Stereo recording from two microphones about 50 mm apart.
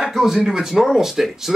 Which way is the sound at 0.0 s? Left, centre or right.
Centre.